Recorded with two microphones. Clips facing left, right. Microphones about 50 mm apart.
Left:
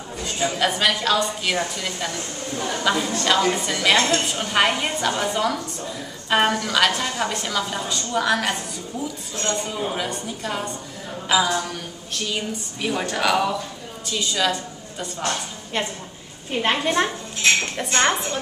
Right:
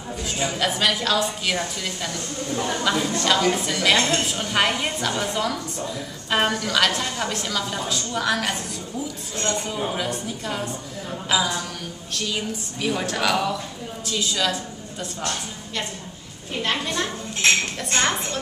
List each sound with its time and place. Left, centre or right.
0.2 s a woman's voice: centre
16.5 s a woman's voice: centre
16.8 s a woman's voice: left
17.9 s a woman's voice: centre